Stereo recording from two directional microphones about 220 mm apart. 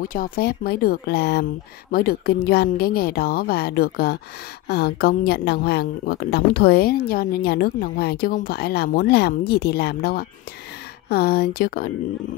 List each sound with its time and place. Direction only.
0.1 s a woman's voice: 45° left (ahead or behind)